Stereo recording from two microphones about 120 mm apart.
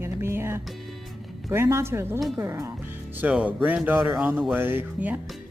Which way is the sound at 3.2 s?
10° right (ahead or behind).